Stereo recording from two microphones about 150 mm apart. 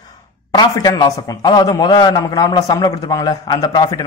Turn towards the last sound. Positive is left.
turn(degrees=30)  # may be behind; listen again after turning